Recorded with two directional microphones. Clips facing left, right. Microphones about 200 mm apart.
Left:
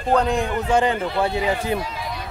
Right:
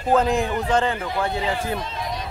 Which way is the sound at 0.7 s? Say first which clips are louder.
Left 4 dB; 15° left (ahead or behind).